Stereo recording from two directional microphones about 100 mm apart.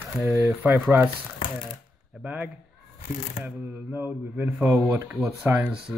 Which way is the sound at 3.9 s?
15° right (ahead or behind).